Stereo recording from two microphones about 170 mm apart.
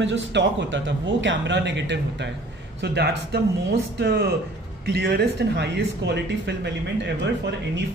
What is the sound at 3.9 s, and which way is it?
Speech, 65° right (ahead or behind).